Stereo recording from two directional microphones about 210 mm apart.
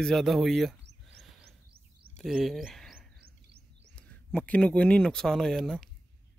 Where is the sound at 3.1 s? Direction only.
50° right (ahead or behind).